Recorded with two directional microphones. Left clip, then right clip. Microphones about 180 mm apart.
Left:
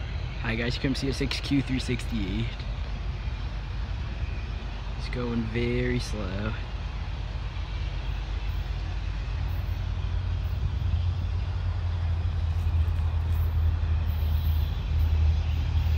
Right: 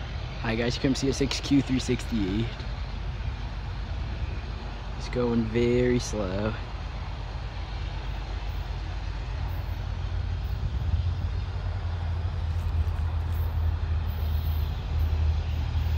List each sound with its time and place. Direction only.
0.4 s speech: 15° right (ahead or behind)
5.1 s speech: 15° right (ahead or behind)